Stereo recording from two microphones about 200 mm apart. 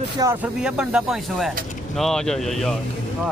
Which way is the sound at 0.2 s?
20° right (ahead or behind).